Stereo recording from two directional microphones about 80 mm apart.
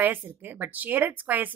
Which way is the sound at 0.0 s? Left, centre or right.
Right.